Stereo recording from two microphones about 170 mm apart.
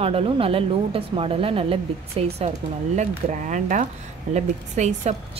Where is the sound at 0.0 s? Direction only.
35° right (ahead or behind).